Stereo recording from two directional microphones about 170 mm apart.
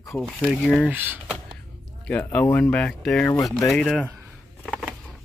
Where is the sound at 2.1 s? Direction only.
10° left (ahead or behind).